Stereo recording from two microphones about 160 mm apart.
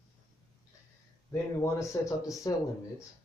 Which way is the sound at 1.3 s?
20° left (ahead or behind).